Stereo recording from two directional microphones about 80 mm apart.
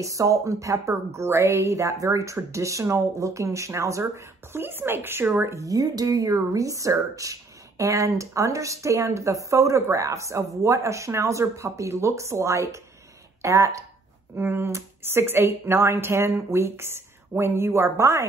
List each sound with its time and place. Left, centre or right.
0.0 s speech: right
4.0 s speech: right
14.3 s speech: right